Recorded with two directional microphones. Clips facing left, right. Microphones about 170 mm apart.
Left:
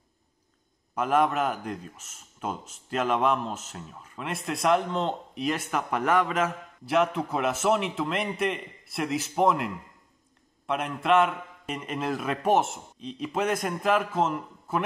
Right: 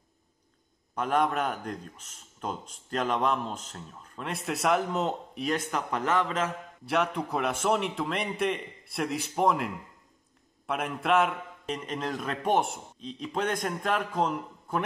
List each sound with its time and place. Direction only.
0.9 s speech: 5° left (ahead or behind)
10.7 s speech: centre (ahead or behind)